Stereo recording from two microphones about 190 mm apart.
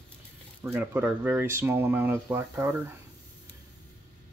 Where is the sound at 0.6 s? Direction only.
10° right (ahead or behind).